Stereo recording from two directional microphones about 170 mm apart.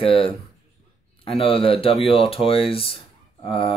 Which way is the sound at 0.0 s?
30° left (ahead or behind).